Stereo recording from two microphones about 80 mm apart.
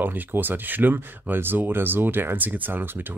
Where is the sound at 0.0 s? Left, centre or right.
Right.